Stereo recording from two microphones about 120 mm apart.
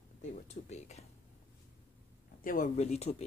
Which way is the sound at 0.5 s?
70° left (ahead or behind).